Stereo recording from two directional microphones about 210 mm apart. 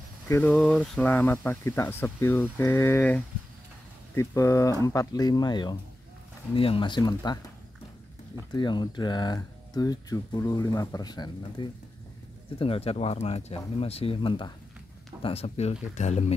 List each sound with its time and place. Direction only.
0.3 s speech: 5° left (ahead or behind)
8.5 s speech: 20° left (ahead or behind)